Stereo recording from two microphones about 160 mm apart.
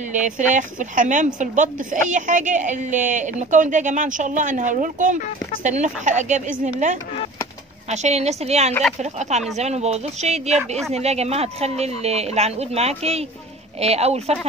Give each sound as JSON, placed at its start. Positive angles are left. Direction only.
{"t": 0.1, "sound": "a woman's voice", "side_deg": -50}